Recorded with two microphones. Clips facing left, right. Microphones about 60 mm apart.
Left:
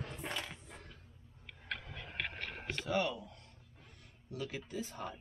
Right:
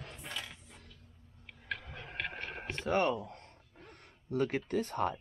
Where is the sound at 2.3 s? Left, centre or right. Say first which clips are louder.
Right 2 dB; right.